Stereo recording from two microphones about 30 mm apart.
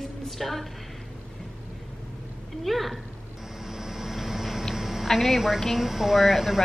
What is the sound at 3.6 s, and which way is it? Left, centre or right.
Vehicle, centre.